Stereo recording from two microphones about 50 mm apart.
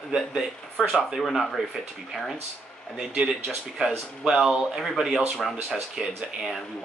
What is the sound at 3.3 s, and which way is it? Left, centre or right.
Speech, centre.